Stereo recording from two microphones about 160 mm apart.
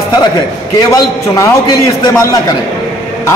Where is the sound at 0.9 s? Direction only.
20° left (ahead or behind).